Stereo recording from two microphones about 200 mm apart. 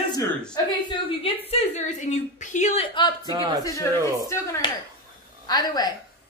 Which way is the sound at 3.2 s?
20° right (ahead or behind).